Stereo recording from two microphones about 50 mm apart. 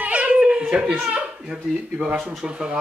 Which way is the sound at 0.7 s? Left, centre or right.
Centre.